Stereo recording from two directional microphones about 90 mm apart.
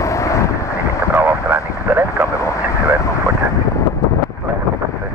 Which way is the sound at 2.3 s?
35° left (ahead or behind).